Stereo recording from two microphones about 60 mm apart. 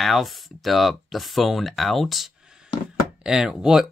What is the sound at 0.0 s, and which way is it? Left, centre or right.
Speech, centre.